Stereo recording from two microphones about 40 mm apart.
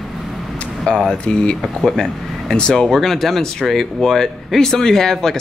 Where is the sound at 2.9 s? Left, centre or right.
Centre.